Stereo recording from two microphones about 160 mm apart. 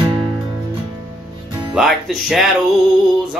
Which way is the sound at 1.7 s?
5° right (ahead or behind).